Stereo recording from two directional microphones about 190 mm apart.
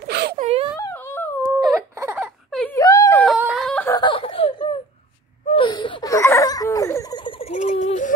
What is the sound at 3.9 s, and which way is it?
Snicker, 25° left (ahead or behind).